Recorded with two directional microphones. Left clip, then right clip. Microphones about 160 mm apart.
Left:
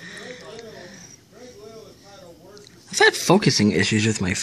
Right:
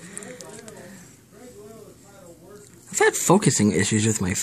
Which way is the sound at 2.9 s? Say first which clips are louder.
Left 2 dB; centre (ahead or behind).